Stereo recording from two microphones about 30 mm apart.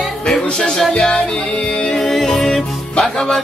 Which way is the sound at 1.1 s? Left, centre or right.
Left.